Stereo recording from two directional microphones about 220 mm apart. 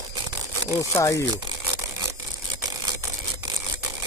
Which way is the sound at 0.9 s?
15° left (ahead or behind).